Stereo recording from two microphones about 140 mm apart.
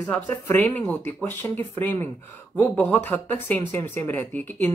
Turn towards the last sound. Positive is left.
turn(degrees=15)  # may be behind; listen again after turning